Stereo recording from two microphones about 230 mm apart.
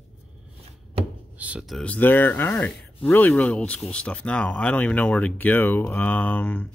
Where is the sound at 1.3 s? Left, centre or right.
Centre.